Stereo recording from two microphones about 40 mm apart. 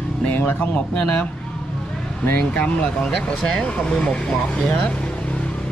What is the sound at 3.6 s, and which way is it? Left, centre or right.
Speech, left.